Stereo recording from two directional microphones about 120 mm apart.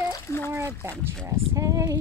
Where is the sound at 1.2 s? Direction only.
20° right (ahead or behind).